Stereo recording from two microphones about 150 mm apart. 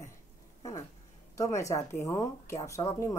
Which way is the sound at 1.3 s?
20° left (ahead or behind).